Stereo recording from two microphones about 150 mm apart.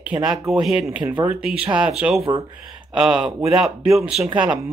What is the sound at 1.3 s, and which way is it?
Speech, 10° right (ahead or behind).